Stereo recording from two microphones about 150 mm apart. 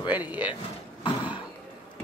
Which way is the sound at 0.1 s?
10° right (ahead or behind).